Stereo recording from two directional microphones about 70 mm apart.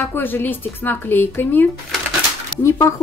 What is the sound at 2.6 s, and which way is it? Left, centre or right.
Speech, left.